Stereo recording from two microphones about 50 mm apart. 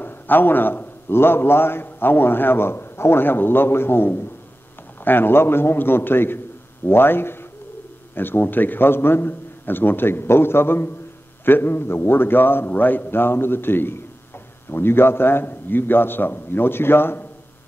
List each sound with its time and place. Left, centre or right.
0.0 s a man's voice: left